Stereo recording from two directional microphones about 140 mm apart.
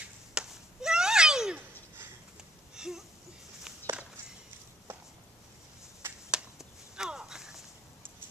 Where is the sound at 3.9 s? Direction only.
20° right (ahead or behind).